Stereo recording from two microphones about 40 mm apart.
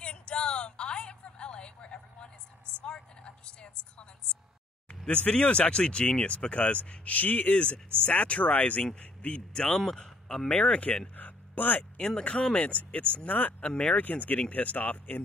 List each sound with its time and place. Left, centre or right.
0.0 s a sound: left
5.0 s speech: left
7.5 s a man's voice: left
10.7 s speech: left
11.1 s a sound: left
12.0 s speech: centre
12.7 s speech: left
13.6 s speech: left
14.0 s speech: left